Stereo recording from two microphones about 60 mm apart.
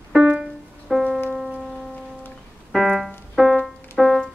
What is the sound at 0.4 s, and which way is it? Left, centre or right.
Music, centre.